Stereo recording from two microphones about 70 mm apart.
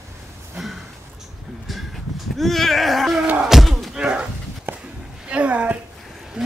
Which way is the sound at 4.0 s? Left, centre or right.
Centre.